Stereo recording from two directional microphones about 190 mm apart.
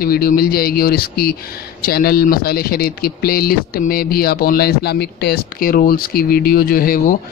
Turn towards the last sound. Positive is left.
turn(degrees=50)  # may be behind; listen again after turning